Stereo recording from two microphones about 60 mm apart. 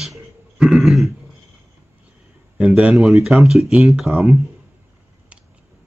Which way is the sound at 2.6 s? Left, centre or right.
Centre.